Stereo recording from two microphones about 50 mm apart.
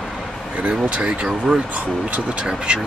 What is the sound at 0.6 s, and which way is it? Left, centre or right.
Speech, right.